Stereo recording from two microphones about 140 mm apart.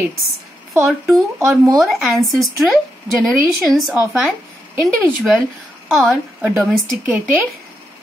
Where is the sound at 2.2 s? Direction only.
Centre (ahead or behind).